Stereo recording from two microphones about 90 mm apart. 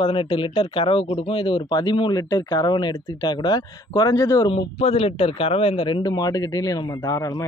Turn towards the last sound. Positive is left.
turn(degrees=40)  # may be behind; listen again after turning